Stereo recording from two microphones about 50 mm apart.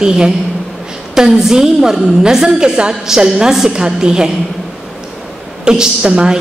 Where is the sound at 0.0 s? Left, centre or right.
Centre.